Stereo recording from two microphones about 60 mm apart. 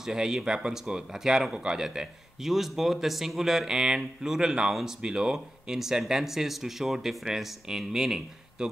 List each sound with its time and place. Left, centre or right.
0.0 s speech: centre